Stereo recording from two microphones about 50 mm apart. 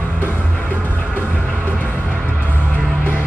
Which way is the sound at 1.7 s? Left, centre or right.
Left.